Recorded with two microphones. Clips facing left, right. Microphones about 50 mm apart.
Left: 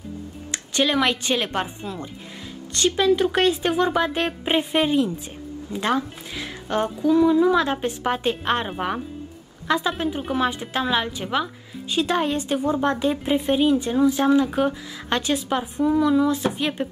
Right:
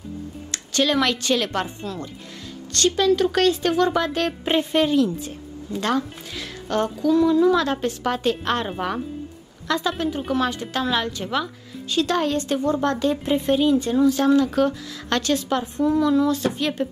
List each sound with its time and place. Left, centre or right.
0.5 s a woman's voice: centre